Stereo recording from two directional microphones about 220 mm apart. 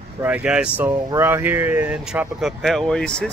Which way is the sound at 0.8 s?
20° right (ahead or behind).